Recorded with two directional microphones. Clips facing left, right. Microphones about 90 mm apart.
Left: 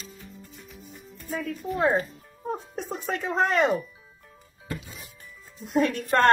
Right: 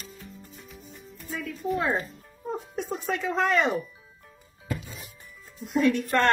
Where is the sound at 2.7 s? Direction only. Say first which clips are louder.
Right 1 dB; 35° left (ahead or behind).